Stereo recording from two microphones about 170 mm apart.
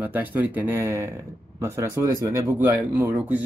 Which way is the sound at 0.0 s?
10° right (ahead or behind).